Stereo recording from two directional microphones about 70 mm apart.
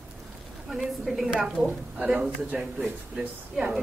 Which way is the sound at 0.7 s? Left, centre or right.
Centre.